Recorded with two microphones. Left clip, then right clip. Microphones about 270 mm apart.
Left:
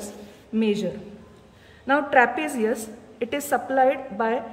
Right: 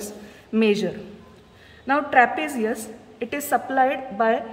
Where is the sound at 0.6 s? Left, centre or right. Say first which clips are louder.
Right 4 dB; centre.